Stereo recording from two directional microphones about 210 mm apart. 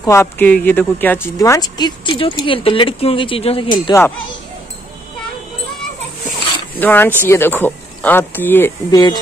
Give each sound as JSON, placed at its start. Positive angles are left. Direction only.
{"t": 0.0, "sound": "speech", "side_deg": 15}
{"t": 6.8, "sound": "speech", "side_deg": 10}